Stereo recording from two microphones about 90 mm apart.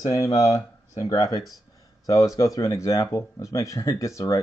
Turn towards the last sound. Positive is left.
turn(degrees=35)  # may be behind; listen again after turning